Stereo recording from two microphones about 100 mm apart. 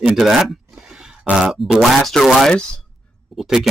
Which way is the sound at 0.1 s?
5° right (ahead or behind).